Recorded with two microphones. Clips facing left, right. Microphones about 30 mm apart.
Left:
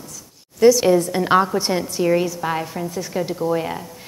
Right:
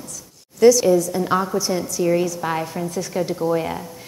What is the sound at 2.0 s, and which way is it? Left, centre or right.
Speech, centre.